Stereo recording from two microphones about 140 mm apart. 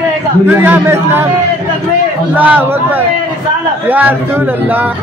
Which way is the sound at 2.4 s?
10° right (ahead or behind).